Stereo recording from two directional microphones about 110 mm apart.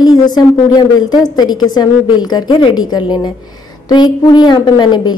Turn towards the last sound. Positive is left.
turn(degrees=45)  # may be behind; listen again after turning